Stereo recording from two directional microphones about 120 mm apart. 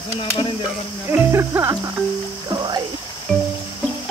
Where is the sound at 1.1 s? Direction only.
20° right (ahead or behind).